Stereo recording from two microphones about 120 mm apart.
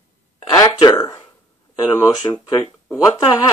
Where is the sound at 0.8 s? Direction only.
25° left (ahead or behind).